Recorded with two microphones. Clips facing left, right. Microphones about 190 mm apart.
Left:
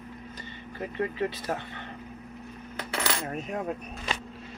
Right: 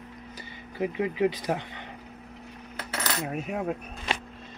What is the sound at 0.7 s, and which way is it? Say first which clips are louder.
Speech: right 3 dB; 10° right (ahead or behind).